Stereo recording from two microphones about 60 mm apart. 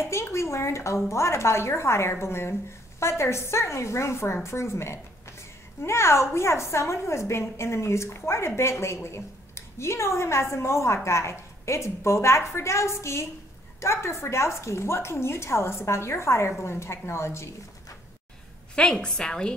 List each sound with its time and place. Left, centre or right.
0.0 s a sound: left
1.1 s a woman's voice: left
18.8 s a woman's voice: centre